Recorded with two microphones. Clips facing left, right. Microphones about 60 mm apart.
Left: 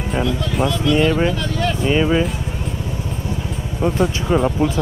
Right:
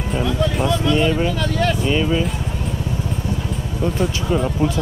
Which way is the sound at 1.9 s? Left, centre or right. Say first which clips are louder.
Left 2 dB; left.